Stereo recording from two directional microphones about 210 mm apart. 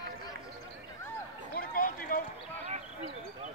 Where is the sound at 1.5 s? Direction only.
45° left (ahead or behind).